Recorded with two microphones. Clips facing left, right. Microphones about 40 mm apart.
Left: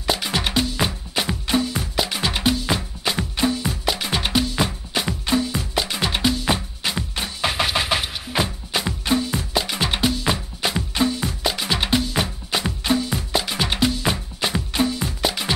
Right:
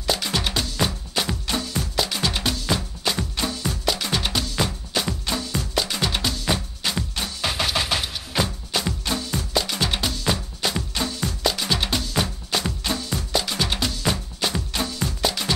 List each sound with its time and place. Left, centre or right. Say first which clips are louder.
0.0 s music: left 2 dB; centre